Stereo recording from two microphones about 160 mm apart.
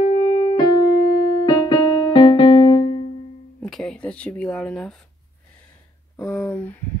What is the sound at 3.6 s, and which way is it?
Speech, 5° left (ahead or behind).